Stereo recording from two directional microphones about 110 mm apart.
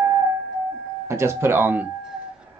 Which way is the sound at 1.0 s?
25° right (ahead or behind).